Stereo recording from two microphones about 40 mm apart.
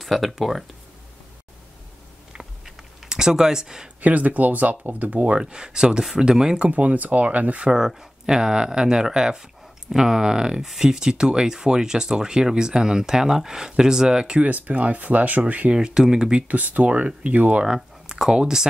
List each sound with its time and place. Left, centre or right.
0.0 s speech: centre
2.3 s typing: centre
4.0 s speech: right
5.4 s speech: right
6.7 s speech: right
7.7 s speech: centre
14.4 s speech: right
15.7 s speech: centre
16.4 s speech: right
18.3 s speech: centre